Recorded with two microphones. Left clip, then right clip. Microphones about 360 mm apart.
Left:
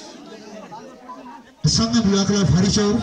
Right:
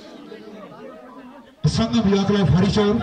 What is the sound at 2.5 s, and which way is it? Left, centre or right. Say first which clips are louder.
Speech: even; right.